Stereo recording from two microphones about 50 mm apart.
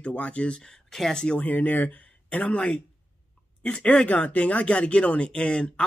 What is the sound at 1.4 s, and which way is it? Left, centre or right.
Speech, left.